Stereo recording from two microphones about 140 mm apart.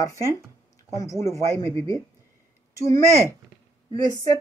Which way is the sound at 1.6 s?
25° left (ahead or behind).